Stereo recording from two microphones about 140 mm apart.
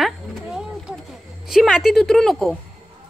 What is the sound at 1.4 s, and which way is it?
A woman's voice, centre (ahead or behind).